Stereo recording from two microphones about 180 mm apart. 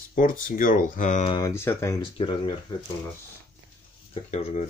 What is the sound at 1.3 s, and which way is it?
Speech, 20° left (ahead or behind).